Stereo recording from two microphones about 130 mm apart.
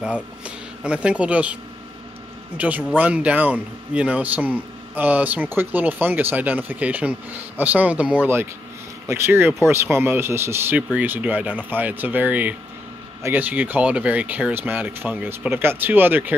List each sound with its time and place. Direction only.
0.8 s a man's voice: 10° right (ahead or behind)